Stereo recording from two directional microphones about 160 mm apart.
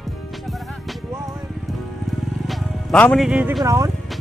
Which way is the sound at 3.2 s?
5° right (ahead or behind).